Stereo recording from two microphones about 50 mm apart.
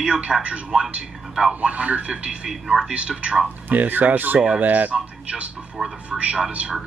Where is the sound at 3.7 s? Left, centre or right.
Right.